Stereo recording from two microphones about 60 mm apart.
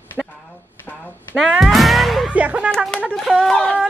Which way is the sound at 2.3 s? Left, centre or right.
Right.